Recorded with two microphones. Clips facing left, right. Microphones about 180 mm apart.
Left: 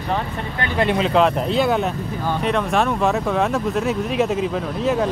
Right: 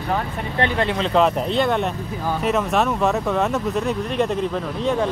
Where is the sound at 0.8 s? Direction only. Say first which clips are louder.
Left 3 dB; 15° left (ahead or behind).